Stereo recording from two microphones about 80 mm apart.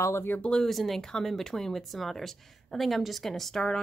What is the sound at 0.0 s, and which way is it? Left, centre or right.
Speech, left.